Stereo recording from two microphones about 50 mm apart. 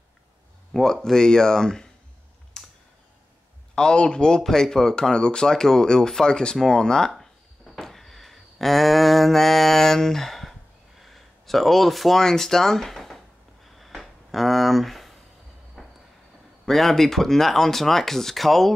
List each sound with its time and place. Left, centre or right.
1.0 s speech: centre
2.6 s clicking: centre
3.7 s speech: centre
7.1 s a sound: centre
11.0 s speech: centre
13.7 s a sound: centre
15.8 s train: centre
16.6 s speech: centre